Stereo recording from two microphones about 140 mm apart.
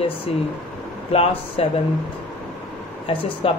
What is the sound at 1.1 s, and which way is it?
Speech, 45° left (ahead or behind).